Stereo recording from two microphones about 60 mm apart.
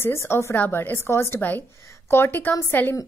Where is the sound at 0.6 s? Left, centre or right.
Left.